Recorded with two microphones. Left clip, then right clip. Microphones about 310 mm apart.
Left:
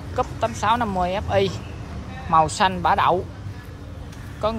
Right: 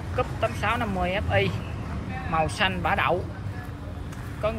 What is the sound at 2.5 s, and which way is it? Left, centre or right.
Speech, centre.